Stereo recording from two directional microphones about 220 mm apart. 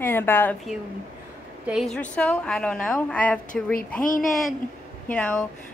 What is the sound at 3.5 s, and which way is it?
Speech, 40° left (ahead or behind).